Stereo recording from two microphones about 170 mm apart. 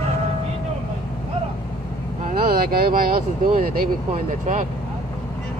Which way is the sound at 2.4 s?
60° right (ahead or behind).